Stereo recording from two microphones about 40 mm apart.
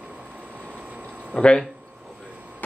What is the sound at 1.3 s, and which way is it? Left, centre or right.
Speech, left.